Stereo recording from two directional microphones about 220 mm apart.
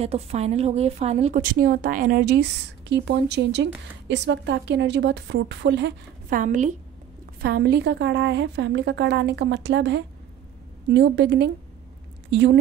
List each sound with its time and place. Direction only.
0.0 s a woman's voice: 30° right (ahead or behind); by 5.9 s 55° right (ahead or behind)
6.3 s a woman's voice: 35° right (ahead or behind)
7.4 s a woman's voice: 50° right (ahead or behind)